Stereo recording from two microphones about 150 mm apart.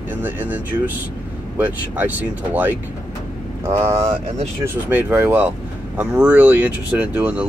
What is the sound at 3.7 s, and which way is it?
Speech, 20° right (ahead or behind).